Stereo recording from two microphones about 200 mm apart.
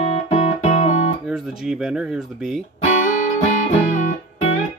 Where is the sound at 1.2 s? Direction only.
Centre (ahead or behind).